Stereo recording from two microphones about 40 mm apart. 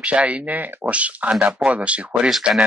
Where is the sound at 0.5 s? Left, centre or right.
Right.